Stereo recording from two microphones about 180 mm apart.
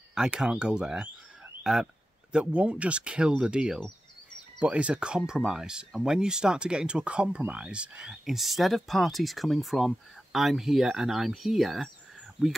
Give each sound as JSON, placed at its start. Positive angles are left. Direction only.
{"t": 0.1, "sound": "speech", "side_deg": -5}